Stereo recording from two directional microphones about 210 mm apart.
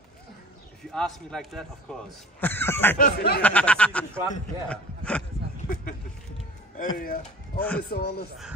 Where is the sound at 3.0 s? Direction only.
50° left (ahead or behind).